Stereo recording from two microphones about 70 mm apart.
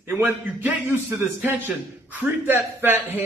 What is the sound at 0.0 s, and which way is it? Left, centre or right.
Speech, right.